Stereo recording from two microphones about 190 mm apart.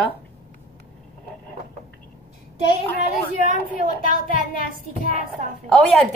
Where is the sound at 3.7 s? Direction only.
45° left (ahead or behind).